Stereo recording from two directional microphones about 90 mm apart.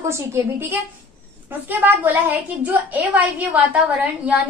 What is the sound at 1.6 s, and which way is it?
A woman's voice, 20° right (ahead or behind).